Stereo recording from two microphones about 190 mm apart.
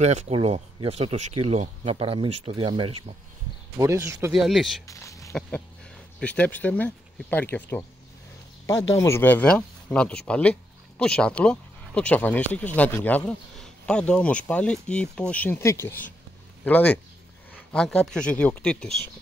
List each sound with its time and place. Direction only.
0.0 s speech: 35° right (ahead or behind)
3.7 s speech: 15° right (ahead or behind)
4.3 s speech: centre (ahead or behind)
4.8 s a sound: 15° left (ahead or behind)
6.1 s speech: 5° left (ahead or behind)
8.9 s speech: 15° left (ahead or behind)